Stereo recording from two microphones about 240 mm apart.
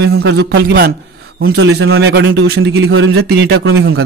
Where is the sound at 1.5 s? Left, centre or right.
Right.